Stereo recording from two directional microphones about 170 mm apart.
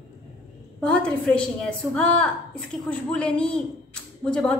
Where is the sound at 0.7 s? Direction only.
5° left (ahead or behind).